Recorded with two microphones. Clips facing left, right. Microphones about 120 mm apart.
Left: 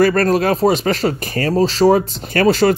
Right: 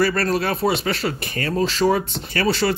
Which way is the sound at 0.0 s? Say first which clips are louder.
Left 6 dB; 45° left (ahead or behind).